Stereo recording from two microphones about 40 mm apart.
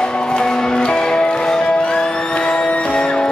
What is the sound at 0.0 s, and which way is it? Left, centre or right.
Music, left.